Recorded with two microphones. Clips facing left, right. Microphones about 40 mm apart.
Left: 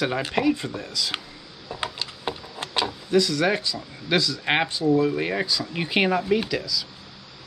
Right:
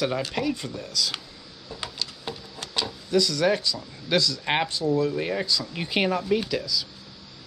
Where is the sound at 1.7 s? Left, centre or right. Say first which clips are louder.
Left 4 dB; left.